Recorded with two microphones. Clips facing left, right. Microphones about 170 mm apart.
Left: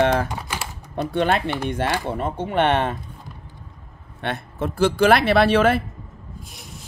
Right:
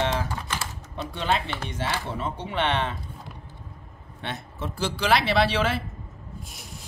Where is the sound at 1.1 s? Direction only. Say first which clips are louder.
Left 6 dB; 55° left (ahead or behind).